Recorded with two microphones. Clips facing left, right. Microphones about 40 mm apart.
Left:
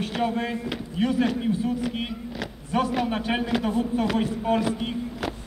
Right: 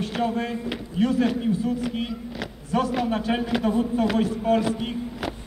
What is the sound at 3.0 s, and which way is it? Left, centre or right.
Speech, left.